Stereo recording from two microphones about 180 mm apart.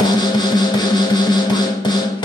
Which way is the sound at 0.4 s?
25° left (ahead or behind).